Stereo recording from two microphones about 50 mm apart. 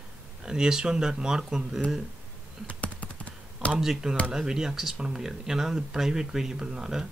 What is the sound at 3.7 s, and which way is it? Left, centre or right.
Speech, centre.